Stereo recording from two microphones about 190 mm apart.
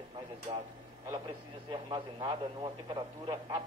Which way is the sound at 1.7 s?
25° right (ahead or behind).